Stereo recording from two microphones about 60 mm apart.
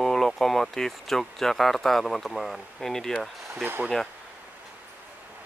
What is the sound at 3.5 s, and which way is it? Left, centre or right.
Speech, right.